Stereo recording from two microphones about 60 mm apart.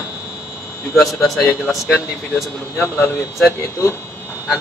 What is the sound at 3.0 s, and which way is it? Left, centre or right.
Speech, left.